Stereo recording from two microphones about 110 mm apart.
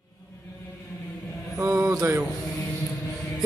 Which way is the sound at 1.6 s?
30° right (ahead or behind).